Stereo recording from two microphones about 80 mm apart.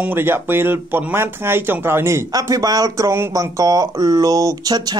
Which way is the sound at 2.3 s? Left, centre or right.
Right.